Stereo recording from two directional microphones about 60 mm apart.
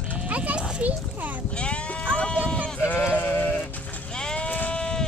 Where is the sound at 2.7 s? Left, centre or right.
Left; by 5.0 s centre.